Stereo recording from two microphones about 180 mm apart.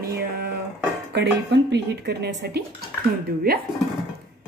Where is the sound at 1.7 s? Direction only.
65° right (ahead or behind).